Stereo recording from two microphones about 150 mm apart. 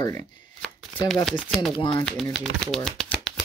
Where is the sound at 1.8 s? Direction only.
30° left (ahead or behind).